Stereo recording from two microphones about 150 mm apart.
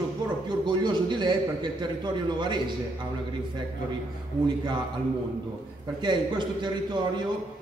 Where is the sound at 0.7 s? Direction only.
30° right (ahead or behind).